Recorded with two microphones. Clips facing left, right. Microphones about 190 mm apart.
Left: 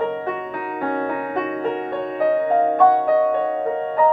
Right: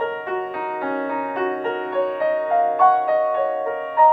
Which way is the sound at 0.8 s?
50° left (ahead or behind).